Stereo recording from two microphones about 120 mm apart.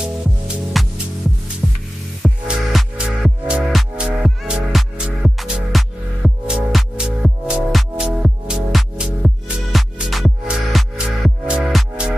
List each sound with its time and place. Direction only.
0.8 s music: centre (ahead or behind)